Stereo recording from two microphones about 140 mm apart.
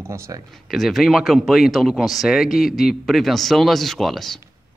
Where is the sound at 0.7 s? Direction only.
Centre (ahead or behind).